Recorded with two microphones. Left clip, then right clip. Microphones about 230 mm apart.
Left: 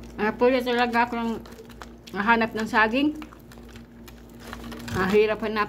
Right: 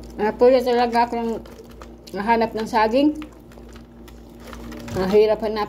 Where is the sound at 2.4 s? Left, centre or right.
Left.